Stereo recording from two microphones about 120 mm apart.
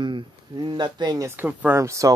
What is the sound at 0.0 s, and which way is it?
Speech, 40° right (ahead or behind).